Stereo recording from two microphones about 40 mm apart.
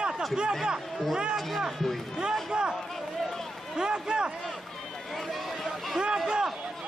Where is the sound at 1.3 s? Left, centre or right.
Centre.